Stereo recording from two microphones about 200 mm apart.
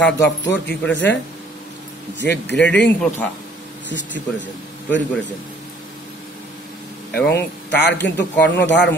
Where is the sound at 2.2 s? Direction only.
60° left (ahead or behind).